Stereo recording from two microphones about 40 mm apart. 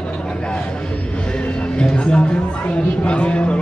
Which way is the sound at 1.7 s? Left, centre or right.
Left.